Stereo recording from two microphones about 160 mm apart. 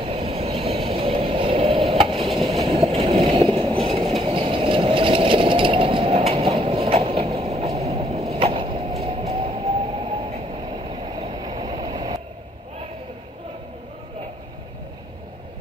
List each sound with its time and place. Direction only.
0.0 s vehicle: 35° right (ahead or behind)
2.9 s a sound: 35° right (ahead or behind)
3.8 s train: 35° right (ahead or behind)
4.2 s engine: 35° right (ahead or behind)
9.0 s a sound: 40° right (ahead or behind)
10.9 s vehicle: 35° right (ahead or behind)